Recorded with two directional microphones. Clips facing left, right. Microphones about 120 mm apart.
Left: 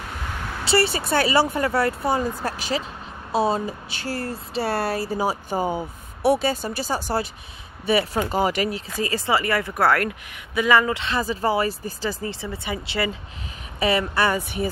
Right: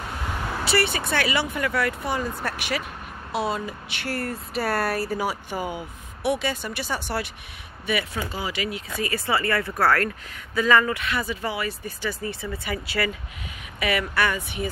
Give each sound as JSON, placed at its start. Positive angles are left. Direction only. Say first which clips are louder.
{"t": 0.3, "sound": "vehicle", "louder": "right 4 dB", "side_deg": -5}
{"t": 0.7, "sound": "speech", "louder": "left 4 dB", "side_deg": 30}
{"t": 8.2, "sound": "speech", "louder": "left 8 dB", "side_deg": 50}